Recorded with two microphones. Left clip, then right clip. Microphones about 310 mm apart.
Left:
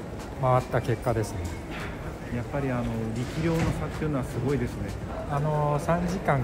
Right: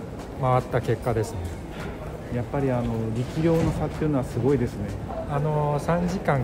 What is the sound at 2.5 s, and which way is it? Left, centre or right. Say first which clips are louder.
Speech: right 4 dB; right.